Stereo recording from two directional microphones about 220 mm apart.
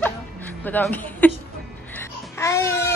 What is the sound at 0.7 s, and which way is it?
Speech, 10° left (ahead or behind).